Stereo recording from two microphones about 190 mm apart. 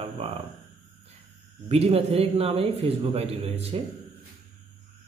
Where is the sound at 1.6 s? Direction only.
30° right (ahead or behind).